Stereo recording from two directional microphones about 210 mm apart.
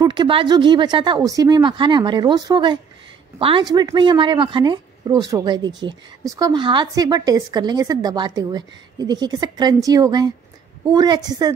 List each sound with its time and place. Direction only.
0.0 s speech: 20° right (ahead or behind)